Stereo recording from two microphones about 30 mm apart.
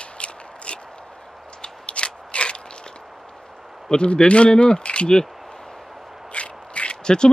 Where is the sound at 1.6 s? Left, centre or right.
Left.